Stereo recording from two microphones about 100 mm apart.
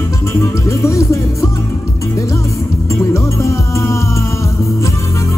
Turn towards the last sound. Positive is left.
turn(degrees=30)  # may be behind; listen again after turning